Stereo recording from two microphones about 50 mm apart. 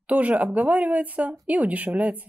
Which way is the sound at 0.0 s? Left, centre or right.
Right.